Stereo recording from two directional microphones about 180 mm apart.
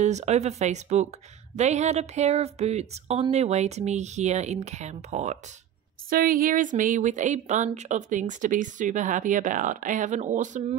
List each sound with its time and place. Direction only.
0.0 s a woman's voice: 40° right (ahead or behind)
6.0 s speech: 55° right (ahead or behind)